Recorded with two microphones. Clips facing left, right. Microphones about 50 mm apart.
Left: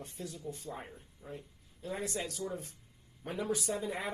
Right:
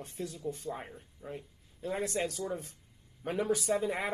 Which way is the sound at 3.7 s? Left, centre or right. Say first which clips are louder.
Right 5 dB; right.